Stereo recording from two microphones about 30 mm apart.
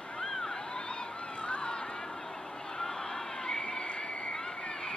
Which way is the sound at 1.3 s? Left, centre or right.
Left.